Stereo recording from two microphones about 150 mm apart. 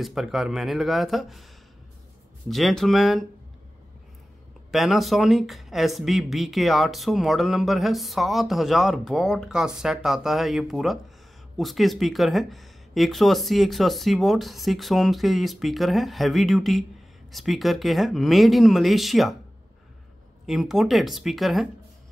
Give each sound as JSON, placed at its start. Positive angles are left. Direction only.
{"t": 0.0, "sound": "speech", "side_deg": 0}
{"t": 2.5, "sound": "speech", "side_deg": 0}
{"t": 4.6, "sound": "speech", "side_deg": 0}
{"t": 20.4, "sound": "speech", "side_deg": 0}